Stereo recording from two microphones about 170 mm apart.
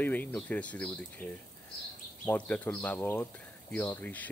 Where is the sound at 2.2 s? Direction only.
5° left (ahead or behind).